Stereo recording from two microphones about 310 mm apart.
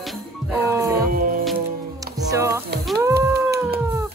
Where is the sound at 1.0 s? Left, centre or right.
Right.